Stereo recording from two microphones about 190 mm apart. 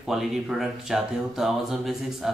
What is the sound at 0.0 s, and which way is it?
Speech, centre (ahead or behind).